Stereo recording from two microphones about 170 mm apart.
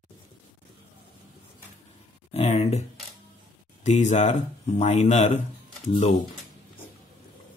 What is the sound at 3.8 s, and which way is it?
Speech, 45° left (ahead or behind).